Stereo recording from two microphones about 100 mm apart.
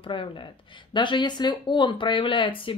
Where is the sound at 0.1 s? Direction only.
55° left (ahead or behind).